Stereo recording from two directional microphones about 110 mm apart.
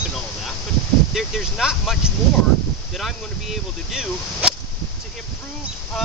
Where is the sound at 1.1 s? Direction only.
5° right (ahead or behind).